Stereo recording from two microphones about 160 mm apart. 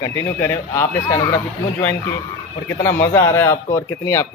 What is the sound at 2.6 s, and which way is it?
Speech, 15° left (ahead or behind).